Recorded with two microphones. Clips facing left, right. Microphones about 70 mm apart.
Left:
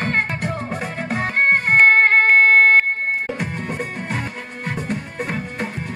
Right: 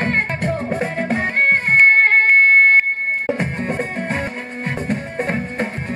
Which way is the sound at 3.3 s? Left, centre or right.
Right.